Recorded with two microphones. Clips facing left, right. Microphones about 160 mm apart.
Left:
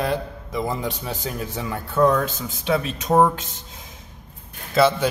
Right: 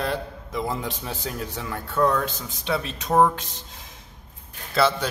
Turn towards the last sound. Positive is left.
turn(degrees=15)  # may be behind; listen again after turning